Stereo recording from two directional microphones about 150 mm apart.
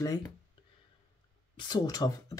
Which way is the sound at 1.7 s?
25° left (ahead or behind).